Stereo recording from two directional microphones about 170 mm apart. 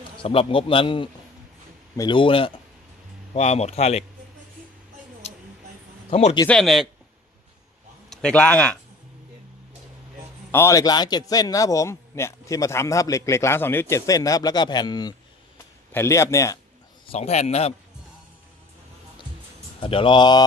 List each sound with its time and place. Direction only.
0.2 s a man's voice: 35° left (ahead or behind)
5.2 s a sound: 35° left (ahead or behind)
6.0 s speech: 40° left (ahead or behind)
6.4 s a man's voice: 5° left (ahead or behind)
8.1 s a man's voice: 5° left (ahead or behind)
10.5 s a man's voice: 15° left (ahead or behind)
17.1 s a man's voice: 40° left (ahead or behind)
19.8 s a man's voice: 30° left (ahead or behind)